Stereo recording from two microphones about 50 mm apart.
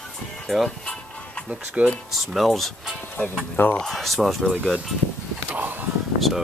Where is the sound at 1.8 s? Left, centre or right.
Right.